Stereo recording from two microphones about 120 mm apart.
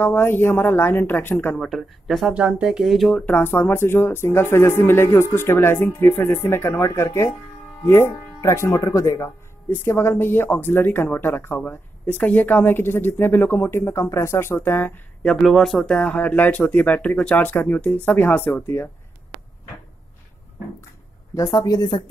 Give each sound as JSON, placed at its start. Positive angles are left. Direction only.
{"t": 0.0, "sound": "speech", "side_deg": 15}
{"t": 15.2, "sound": "speech", "side_deg": 5}
{"t": 21.4, "sound": "speech", "side_deg": 30}